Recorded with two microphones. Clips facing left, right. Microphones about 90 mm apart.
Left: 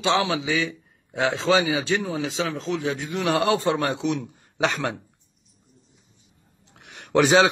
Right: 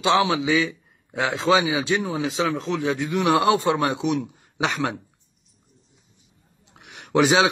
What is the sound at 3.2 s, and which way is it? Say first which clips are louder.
Speech: right 2 dB; 20° right (ahead or behind).